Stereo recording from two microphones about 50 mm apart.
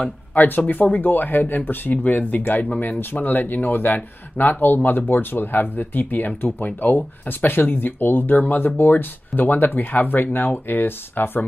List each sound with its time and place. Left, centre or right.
0.3 s speech: left